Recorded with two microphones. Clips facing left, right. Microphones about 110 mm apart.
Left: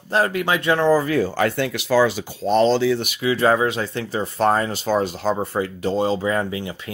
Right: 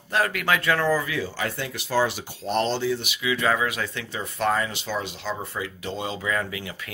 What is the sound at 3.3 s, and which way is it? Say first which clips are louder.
Speech: left 6 dB; 35° left (ahead or behind).